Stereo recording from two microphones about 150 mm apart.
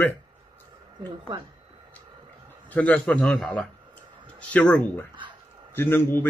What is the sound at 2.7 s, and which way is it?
A man's voice, 10° left (ahead or behind).